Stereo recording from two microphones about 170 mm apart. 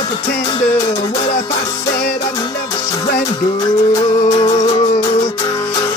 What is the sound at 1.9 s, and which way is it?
Music, 60° left (ahead or behind).